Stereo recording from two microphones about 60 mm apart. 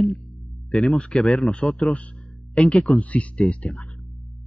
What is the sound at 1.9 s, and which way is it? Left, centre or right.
Speech, centre.